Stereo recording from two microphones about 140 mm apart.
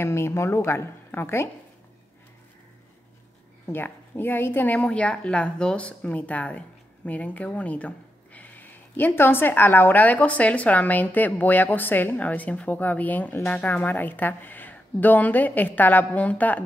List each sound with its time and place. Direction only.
0.0 s speech: 20° left (ahead or behind)
3.6 s speech: 15° left (ahead or behind)